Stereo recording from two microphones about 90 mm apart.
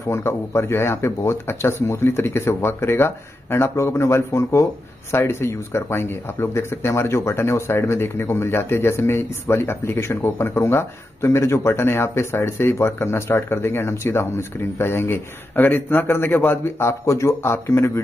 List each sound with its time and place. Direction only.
0.1 s speech: 30° left (ahead or behind)